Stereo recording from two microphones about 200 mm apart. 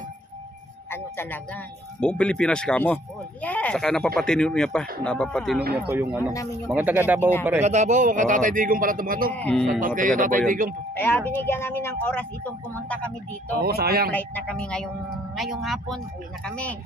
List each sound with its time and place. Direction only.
0.8 s speech: 10° left (ahead or behind)
5.8 s speech: 10° right (ahead or behind)
7.6 s a man's voice: 35° right (ahead or behind)
9.3 s speech: 5° left (ahead or behind)
9.8 s speech: 40° right (ahead or behind)
11.0 s speech: 10° left (ahead or behind)
13.6 s speech: 50° right (ahead or behind)
14.1 s speech: 5° left (ahead or behind)